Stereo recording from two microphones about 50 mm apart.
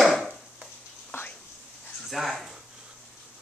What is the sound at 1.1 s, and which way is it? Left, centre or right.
Whispering, left.